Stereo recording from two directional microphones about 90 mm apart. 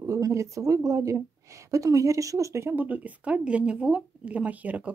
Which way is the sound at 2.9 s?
15° right (ahead or behind).